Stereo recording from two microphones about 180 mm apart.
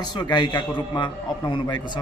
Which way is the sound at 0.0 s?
25° left (ahead or behind).